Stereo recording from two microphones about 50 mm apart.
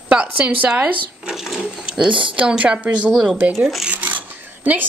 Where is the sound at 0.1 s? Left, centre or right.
Right.